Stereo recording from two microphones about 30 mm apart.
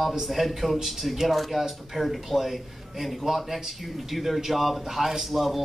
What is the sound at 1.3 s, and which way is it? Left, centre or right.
A man's voice, centre.